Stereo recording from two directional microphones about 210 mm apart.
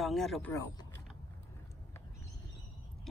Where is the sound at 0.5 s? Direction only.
20° left (ahead or behind).